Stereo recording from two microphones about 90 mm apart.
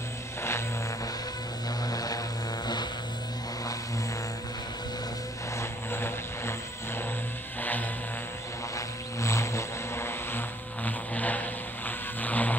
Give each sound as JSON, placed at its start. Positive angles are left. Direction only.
{"t": 0.4, "sound": "a sound", "side_deg": 30}
{"t": 1.9, "sound": "vehicle", "side_deg": 45}
{"t": 5.6, "sound": "vehicle", "side_deg": 25}
{"t": 8.7, "sound": "vehicle", "side_deg": 35}